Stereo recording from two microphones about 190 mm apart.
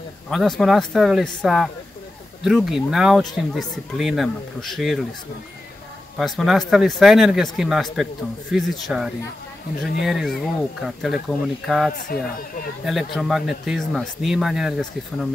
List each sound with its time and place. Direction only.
0.3 s speech: centre (ahead or behind)
6.1 s speech: centre (ahead or behind)
12.0 s speech: 50° left (ahead or behind)
12.8 s speech: centre (ahead or behind)